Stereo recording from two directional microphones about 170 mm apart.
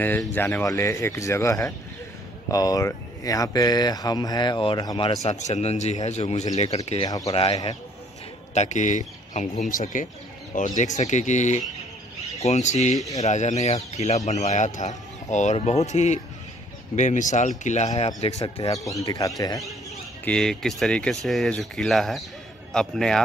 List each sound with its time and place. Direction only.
0.0 s speech: 10° left (ahead or behind); by 6.8 s 40° left (ahead or behind)
7.1 s speech: 20° left (ahead or behind)
8.5 s speech: 45° left (ahead or behind)
18.7 s speech: 20° left (ahead or behind)
20.2 s speech: 5° left (ahead or behind)